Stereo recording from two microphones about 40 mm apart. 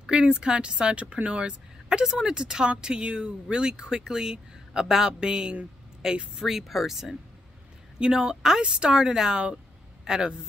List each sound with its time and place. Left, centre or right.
0.0 s speech: right
1.9 s speech: centre
8.2 s speech: centre